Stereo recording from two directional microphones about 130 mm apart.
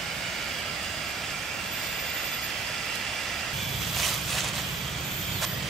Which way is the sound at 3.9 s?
Centre (ahead or behind).